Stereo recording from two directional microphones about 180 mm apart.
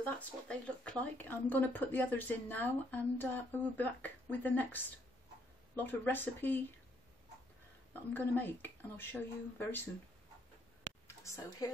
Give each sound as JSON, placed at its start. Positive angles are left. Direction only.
{"t": 0.0, "sound": "speech", "side_deg": 5}
{"t": 7.9, "sound": "speech", "side_deg": 10}
{"t": 11.1, "sound": "speech", "side_deg": 15}